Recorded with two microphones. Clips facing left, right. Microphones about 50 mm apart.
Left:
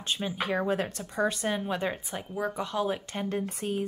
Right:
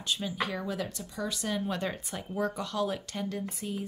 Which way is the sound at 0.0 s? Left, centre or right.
Left.